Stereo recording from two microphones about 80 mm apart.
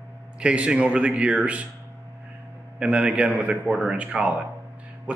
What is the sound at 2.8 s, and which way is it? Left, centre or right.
A man's voice, centre.